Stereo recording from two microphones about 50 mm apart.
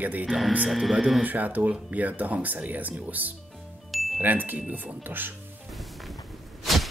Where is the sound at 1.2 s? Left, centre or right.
Right.